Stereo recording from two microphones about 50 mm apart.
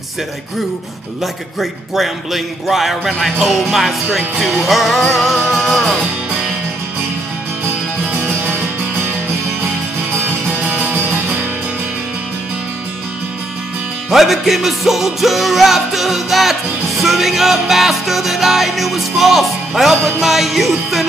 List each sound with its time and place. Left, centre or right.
1.2 s music: centre
7.6 s music: right
10.1 s music: right
14.1 s music: centre